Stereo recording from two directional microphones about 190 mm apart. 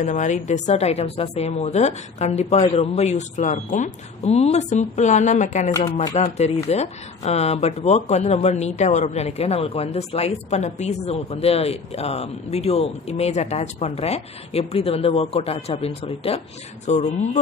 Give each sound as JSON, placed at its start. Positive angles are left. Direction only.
{"t": 0.0, "sound": "speech", "side_deg": 40}